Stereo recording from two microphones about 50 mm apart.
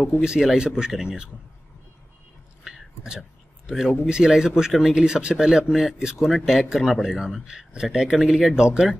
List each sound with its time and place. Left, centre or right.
0.2 s speech: centre
2.6 s a sound: centre
4.1 s speech: centre